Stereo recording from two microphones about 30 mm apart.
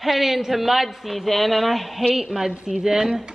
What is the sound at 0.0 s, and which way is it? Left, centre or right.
A woman's voice, centre.